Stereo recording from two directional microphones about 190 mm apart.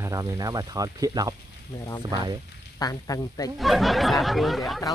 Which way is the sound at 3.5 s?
Centre (ahead or behind).